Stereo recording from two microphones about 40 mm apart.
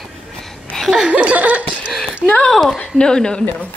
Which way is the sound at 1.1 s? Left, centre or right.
Right.